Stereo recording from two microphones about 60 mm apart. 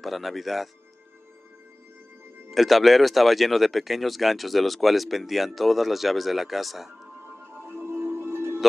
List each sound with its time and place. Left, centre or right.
0.0 s speech: centre
2.5 s speech: centre
7.2 s music: right